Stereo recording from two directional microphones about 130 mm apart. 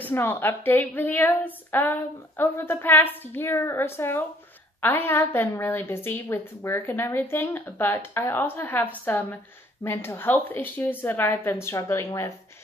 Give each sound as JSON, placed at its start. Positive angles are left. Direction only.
{"t": 0.0, "sound": "a woman's voice", "side_deg": 15}